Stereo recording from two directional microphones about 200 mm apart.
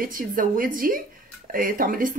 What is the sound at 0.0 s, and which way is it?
Speech, 45° right (ahead or behind).